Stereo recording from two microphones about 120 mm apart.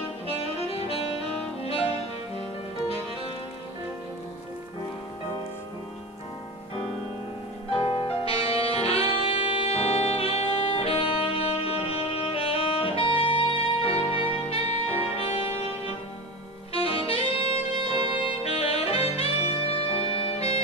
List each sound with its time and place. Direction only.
0.6 s saxophone: 55° left (ahead or behind)
1.6 s music: 55° left (ahead or behind)
7.7 s music: 45° left (ahead or behind)
14.5 s saxophone: 55° left (ahead or behind)
16.7 s saxophone: 50° left (ahead or behind)